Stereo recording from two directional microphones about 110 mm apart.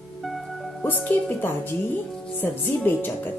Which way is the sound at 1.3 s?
20° left (ahead or behind).